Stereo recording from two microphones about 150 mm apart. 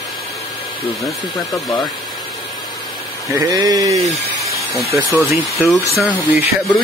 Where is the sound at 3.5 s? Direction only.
25° right (ahead or behind).